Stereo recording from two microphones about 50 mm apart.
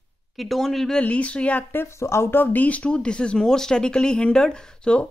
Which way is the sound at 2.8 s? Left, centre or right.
Left.